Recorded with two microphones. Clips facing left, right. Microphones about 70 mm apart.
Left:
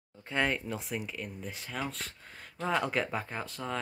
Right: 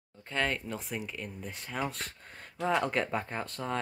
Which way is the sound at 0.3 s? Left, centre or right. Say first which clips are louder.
Left 1 dB; centre.